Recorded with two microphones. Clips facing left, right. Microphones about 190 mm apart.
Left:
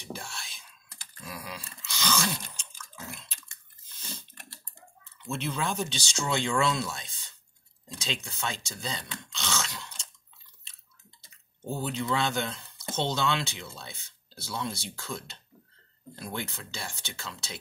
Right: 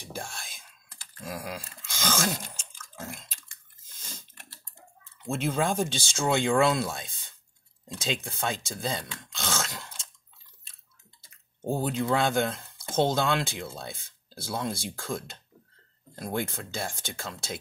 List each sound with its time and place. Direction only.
0.0 s whispering: 50° right (ahead or behind)
1.2 s a sound: 50° right (ahead or behind)
5.0 s speech: 50° right (ahead or behind)